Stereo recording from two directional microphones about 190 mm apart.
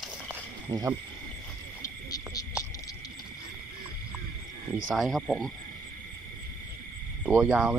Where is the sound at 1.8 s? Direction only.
20° left (ahead or behind).